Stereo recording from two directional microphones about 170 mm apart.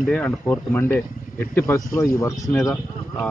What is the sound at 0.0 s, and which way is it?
A man's voice, 10° left (ahead or behind).